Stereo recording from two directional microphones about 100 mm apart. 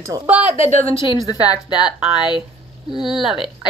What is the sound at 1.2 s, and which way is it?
Speech, 40° left (ahead or behind).